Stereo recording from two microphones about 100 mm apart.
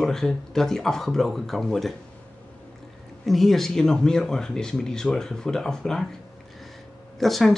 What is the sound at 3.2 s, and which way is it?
Speech, centre (ahead or behind).